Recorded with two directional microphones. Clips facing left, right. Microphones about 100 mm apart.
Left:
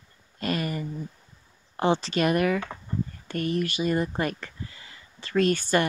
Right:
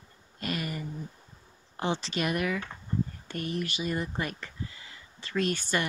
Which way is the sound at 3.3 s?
60° left (ahead or behind).